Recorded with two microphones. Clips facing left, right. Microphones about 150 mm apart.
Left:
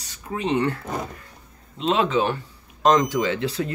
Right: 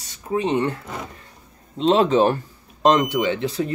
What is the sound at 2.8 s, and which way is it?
Speech, 25° right (ahead or behind).